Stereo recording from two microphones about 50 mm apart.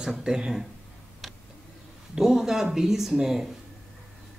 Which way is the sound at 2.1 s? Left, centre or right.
Centre.